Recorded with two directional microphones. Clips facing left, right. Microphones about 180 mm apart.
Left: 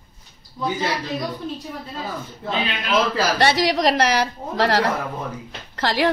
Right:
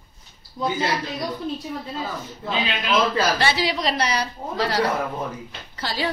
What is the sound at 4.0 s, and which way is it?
Speech, 90° left.